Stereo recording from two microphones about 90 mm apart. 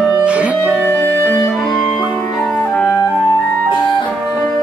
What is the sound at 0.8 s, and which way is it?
Clarinet, 20° left (ahead or behind).